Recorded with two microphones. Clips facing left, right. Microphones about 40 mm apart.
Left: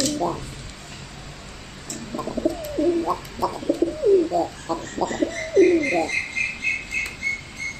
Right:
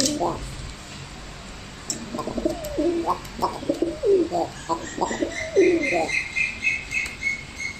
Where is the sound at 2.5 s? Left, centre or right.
Centre.